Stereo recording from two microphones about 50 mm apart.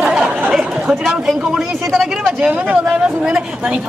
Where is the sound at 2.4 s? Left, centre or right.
Right.